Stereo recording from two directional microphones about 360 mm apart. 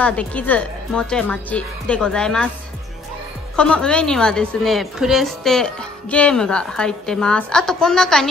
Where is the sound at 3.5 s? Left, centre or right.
Centre.